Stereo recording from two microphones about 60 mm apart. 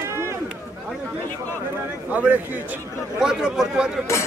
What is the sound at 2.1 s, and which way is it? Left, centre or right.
Speech, right.